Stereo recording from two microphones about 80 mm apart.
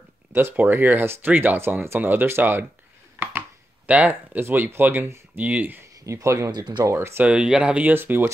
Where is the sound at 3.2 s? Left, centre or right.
Right.